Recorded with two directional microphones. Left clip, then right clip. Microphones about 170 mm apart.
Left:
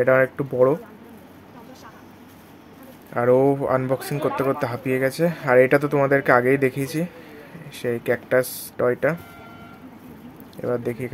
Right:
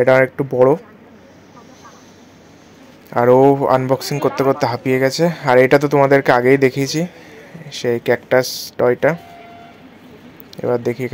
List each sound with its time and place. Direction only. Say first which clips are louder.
0.0 s speech: right 5 dB; 20° right (ahead or behind)
3.1 s speech: right 7 dB; 20° right (ahead or behind)
10.5 s speech: right 7 dB; 15° right (ahead or behind)